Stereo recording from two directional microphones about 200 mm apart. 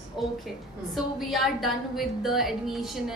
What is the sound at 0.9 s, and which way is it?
A woman's voice, centre (ahead or behind).